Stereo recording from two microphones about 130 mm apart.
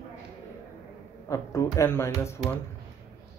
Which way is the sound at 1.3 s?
25° left (ahead or behind).